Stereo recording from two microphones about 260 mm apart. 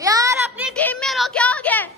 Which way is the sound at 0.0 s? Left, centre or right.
Centre.